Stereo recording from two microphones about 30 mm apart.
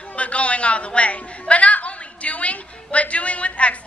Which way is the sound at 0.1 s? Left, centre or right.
Left.